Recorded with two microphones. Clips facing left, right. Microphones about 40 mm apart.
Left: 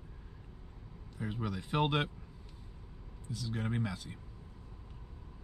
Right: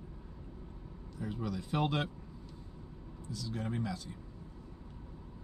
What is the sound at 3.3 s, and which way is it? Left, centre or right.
Speech, left.